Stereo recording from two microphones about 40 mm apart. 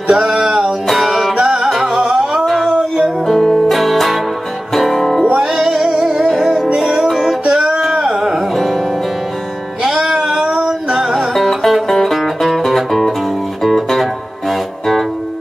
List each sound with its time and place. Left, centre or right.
0.1 s music: centre
1.0 s music: centre
1.4 s music: centre
2.4 s music: centre
5.4 s music: centre
6.2 s music: centre
7.1 s music: centre
7.4 s music: right
7.9 s a sound: centre
9.8 s music: centre
10.1 s a sound: centre
10.6 s music: centre
11.1 s music: centre